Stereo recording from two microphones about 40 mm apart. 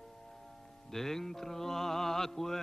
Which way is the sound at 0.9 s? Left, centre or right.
Centre.